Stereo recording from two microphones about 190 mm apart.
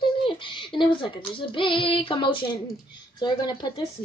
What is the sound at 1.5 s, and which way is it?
A woman's voice, 25° left (ahead or behind).